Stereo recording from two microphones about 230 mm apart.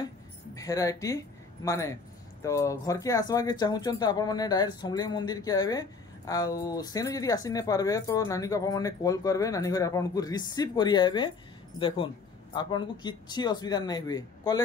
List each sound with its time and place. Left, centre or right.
0.6 s speech: centre
12.5 s speech: centre